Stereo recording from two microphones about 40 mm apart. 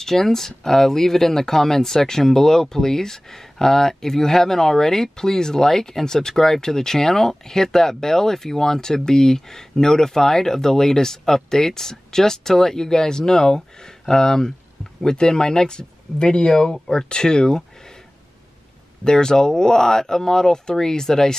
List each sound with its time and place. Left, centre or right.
0.0 s speech: centre
19.0 s speech: centre